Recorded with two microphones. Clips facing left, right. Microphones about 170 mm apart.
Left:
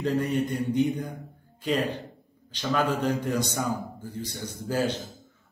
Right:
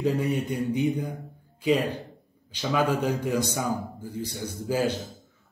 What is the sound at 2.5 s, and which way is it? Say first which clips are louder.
A man's voice: right 1 dB; 10° right (ahead or behind).